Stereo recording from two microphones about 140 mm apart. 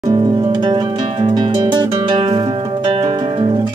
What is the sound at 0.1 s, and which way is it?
Music, 30° right (ahead or behind).